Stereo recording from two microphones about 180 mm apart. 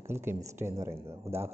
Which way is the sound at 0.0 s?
15° right (ahead or behind).